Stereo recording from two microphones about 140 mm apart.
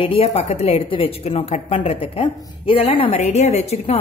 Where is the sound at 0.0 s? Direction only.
45° left (ahead or behind).